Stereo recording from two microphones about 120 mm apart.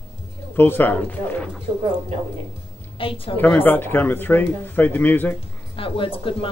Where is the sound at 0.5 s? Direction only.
15° left (ahead or behind).